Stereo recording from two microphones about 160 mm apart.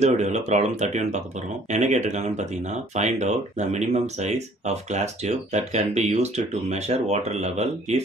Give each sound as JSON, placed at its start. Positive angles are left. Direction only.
{"t": 0.0, "sound": "speech", "side_deg": -45}